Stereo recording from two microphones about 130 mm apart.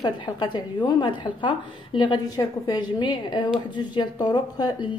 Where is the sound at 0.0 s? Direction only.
35° left (ahead or behind).